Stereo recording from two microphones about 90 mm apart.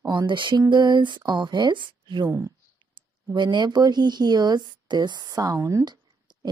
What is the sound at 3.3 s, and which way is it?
A woman's voice, 60° right (ahead or behind).